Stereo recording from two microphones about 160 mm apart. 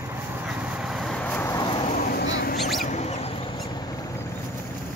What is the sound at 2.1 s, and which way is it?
Rodents, 75° left (ahead or behind).